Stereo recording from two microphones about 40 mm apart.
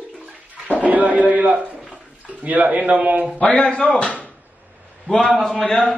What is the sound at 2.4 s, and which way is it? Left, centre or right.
Speech, right.